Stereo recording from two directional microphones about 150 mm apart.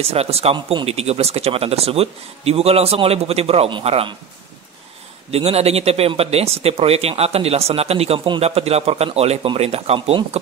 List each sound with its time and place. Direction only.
0.0 s speech: 45° right (ahead or behind)
5.3 s speech: 45° right (ahead or behind)